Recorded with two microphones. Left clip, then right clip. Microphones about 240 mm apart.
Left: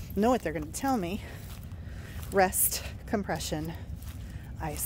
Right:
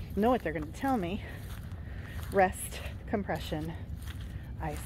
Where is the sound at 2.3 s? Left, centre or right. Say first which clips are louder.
Left 1 dB; left.